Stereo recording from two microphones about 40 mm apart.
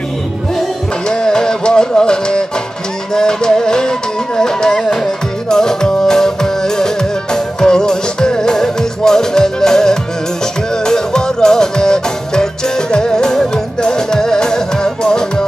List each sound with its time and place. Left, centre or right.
1.0 s music: centre